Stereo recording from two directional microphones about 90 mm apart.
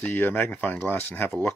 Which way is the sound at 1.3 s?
10° left (ahead or behind).